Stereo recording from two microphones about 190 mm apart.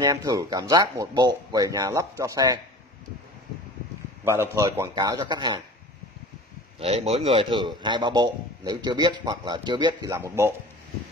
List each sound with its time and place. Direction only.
0.0 s a man's voice: 20° right (ahead or behind)
4.2 s a man's voice: 15° right (ahead or behind)
6.8 s a man's voice: 30° right (ahead or behind); by 10.5 s 15° right (ahead or behind)